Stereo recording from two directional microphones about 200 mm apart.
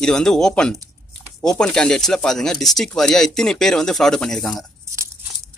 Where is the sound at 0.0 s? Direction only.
5° left (ahead or behind).